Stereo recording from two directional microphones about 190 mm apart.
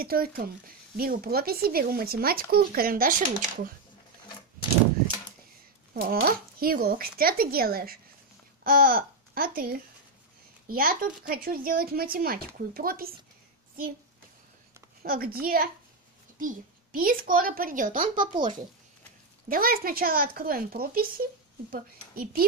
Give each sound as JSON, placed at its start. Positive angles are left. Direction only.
{"t": 0.0, "sound": "speech", "side_deg": -50}
{"t": 5.9, "sound": "speech", "side_deg": -50}
{"t": 15.0, "sound": "speech", "side_deg": -50}
{"t": 18.2, "sound": "a child's voice", "side_deg": -25}
{"t": 19.5, "sound": "speech", "side_deg": -50}